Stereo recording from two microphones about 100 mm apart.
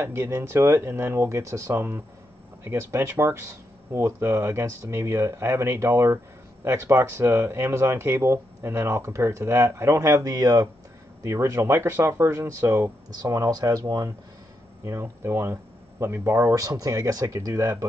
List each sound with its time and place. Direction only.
0.0 s speech: 25° right (ahead or behind)
13.1 s speech: 40° right (ahead or behind)
14.9 s speech: 25° right (ahead or behind)